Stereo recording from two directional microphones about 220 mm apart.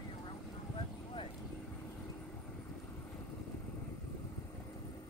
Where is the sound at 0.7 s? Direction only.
25° left (ahead or behind).